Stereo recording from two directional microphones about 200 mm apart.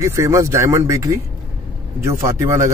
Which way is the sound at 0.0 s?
15° right (ahead or behind).